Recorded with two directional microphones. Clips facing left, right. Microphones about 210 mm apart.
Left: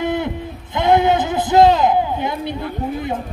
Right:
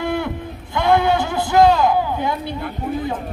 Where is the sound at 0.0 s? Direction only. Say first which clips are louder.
Left 2 dB; 20° left (ahead or behind).